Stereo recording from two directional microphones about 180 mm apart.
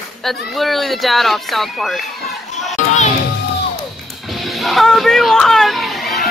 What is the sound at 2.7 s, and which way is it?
Music, 40° left (ahead or behind).